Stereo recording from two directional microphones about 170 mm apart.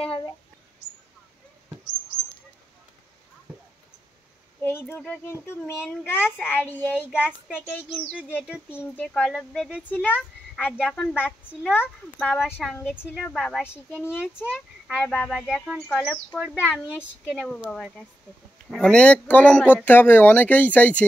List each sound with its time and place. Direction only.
0.0 s speech: 35° left (ahead or behind)
4.6 s a woman's voice: 15° left (ahead or behind)
8.2 s speech: 5° right (ahead or behind)
8.6 s speech: 10° left (ahead or behind)
9.8 s a woman's voice: 10° left (ahead or behind)
11.2 s a woman's voice: 10° left (ahead or behind)
12.4 s speech: 5° right (ahead or behind)
12.7 s a woman's voice: 15° left (ahead or behind)
13.1 s speech: centre (ahead or behind)
14.1 s a woman's voice: 5° right (ahead or behind)